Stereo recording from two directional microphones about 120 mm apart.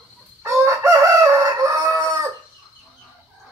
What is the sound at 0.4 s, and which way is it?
Crowing, 25° right (ahead or behind).